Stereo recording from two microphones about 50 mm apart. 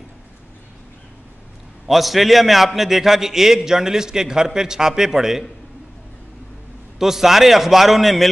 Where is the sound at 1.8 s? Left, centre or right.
Centre.